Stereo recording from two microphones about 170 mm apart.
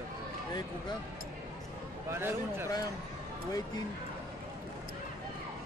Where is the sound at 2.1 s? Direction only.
15° right (ahead or behind).